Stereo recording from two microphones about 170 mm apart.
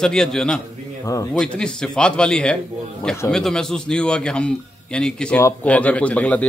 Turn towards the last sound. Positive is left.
turn(degrees=10)  # may be behind; listen again after turning